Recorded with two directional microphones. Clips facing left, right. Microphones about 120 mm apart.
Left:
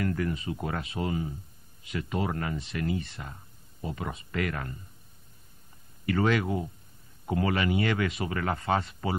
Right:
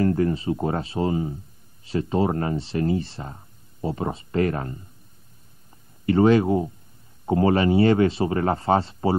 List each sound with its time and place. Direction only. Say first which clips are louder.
0.0 s speech: right 9 dB; 30° right (ahead or behind)
6.0 s speech: right 9 dB; 30° right (ahead or behind)